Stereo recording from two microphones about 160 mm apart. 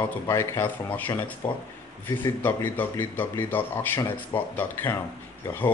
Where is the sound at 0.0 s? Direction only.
20° left (ahead or behind).